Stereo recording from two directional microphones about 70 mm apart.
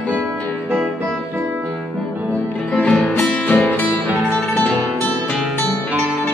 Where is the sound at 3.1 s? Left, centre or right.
Left.